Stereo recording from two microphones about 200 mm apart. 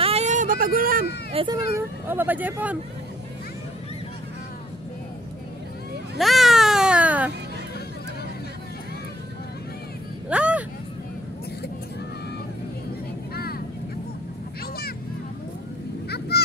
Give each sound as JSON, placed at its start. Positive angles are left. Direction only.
{"t": 0.0, "sound": "a sound", "side_deg": -30}
{"t": 1.3, "sound": "speech", "side_deg": -30}
{"t": 1.8, "sound": "speech", "side_deg": -10}
{"t": 6.1, "sound": "baby cry", "side_deg": 0}
{"t": 10.3, "sound": "vehicle", "side_deg": -5}
{"t": 13.3, "sound": "vehicle", "side_deg": 50}